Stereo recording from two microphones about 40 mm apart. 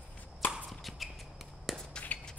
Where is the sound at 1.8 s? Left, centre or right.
Centre.